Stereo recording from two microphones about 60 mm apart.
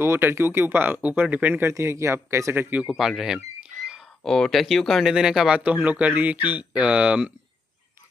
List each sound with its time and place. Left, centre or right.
0.0 s speech: right
1.7 s a man's voice: right
2.9 s speech: centre
4.2 s speech: centre
5.1 s speech: centre
5.6 s speech: right